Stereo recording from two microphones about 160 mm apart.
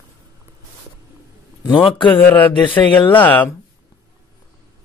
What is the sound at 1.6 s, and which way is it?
Speech, 30° left (ahead or behind).